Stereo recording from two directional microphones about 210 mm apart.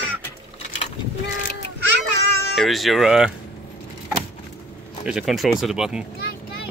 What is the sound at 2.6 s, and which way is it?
Speech, centre (ahead or behind).